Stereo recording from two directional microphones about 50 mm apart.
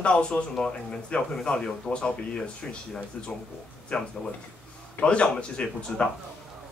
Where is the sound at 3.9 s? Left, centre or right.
Centre.